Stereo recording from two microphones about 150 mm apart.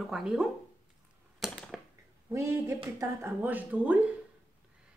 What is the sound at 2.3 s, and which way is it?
A woman's voice, 20° right (ahead or behind).